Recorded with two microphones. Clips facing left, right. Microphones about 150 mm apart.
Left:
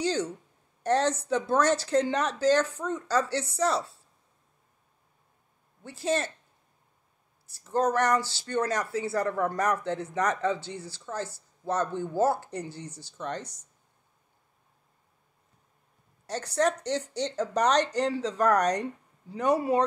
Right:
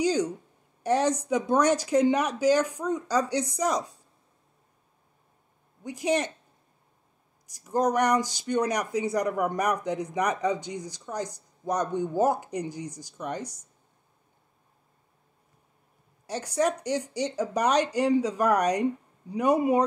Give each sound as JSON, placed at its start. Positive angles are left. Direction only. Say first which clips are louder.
{"t": 0.0, "sound": "speech", "louder": "right 4 dB", "side_deg": -10}
{"t": 5.9, "sound": "speech", "louder": "right 2 dB", "side_deg": -15}
{"t": 7.4, "sound": "speech", "louder": "right 1 dB", "side_deg": -15}
{"t": 16.3, "sound": "speech", "louder": "even", "side_deg": -10}